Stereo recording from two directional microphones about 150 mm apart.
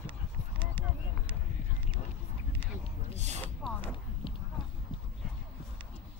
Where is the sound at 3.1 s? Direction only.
50° right (ahead or behind).